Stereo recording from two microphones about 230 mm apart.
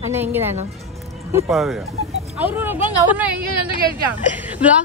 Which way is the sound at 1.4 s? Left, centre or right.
Centre.